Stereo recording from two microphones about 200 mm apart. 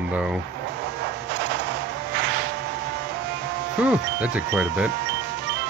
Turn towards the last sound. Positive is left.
turn(degrees=-5)  # may be behind; listen again after turning